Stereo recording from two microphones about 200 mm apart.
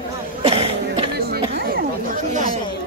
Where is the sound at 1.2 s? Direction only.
50° right (ahead or behind).